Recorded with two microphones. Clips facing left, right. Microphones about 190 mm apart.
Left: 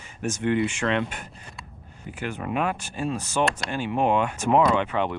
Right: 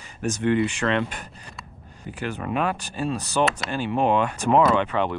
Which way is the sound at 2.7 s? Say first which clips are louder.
Right 1 dB; 35° right (ahead or behind).